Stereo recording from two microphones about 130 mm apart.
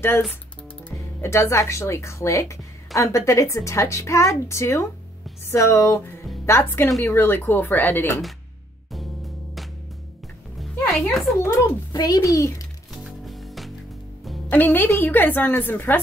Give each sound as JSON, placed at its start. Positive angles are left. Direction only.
{"t": 1.2, "sound": "a woman's voice", "side_deg": 20}
{"t": 10.9, "sound": "a child's voice", "side_deg": 0}
{"t": 11.3, "sound": "a woman's voice", "side_deg": 25}
{"t": 12.9, "sound": "music", "side_deg": 0}
{"t": 14.5, "sound": "a woman's voice", "side_deg": 15}